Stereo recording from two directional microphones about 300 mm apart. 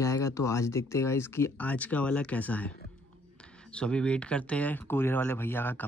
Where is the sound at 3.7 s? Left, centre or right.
Centre.